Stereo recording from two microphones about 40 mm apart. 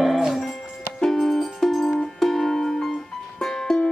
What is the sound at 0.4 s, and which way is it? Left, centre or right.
Music, centre.